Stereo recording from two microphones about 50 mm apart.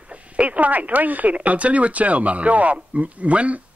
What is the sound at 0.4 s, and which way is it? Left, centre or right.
Speech, right.